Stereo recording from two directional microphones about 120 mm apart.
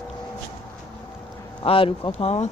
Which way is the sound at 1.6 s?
50° left (ahead or behind).